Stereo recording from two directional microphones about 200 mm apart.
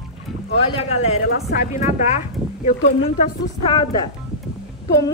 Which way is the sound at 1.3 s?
50° left (ahead or behind).